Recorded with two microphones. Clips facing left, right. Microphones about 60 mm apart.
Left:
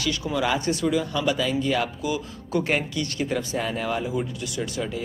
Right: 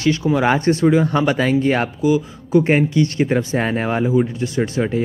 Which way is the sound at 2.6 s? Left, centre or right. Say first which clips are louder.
Right 10 dB; right.